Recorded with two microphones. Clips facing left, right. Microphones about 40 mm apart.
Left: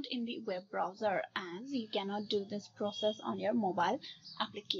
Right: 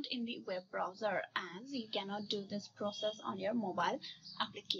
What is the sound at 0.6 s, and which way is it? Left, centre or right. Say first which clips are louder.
A woman's voice: left 4 dB; centre.